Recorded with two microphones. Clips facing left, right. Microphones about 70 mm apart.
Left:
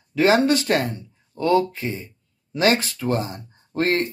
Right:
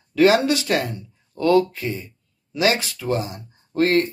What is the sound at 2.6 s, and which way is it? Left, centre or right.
Speech, left.